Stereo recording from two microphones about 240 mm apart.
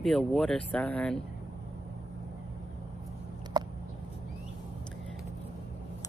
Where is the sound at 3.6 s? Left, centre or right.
Centre.